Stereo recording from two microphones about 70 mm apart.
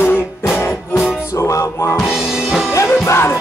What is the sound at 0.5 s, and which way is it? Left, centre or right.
Music, left.